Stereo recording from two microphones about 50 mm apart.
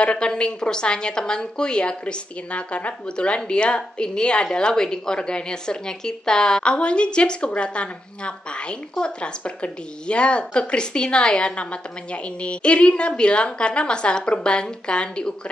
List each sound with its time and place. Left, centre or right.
0.0 s a woman's voice: centre